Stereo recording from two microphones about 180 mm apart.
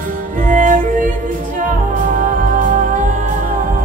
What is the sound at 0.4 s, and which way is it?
Music, 45° right (ahead or behind).